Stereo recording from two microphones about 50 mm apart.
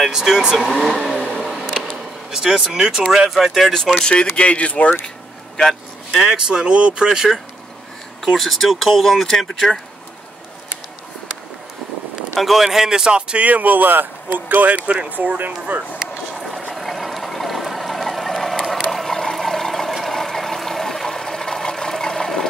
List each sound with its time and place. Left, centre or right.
0.0 s speech: centre
0.6 s vehicle: centre
2.3 s speech: centre
4.0 s speech: centre
6.1 s speech: centre
8.4 s speech: centre
12.4 s speech: centre; by 13.5 s right
13.5 s speech: right
16.3 s vehicle: centre
16.7 s a sound: centre